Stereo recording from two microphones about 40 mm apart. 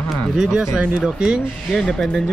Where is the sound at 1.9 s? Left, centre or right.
Centre.